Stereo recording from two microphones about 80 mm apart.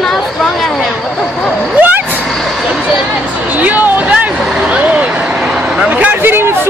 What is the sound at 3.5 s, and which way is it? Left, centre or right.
Speech, centre.